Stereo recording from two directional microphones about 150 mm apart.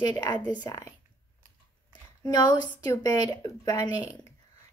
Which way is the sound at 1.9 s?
25° left (ahead or behind).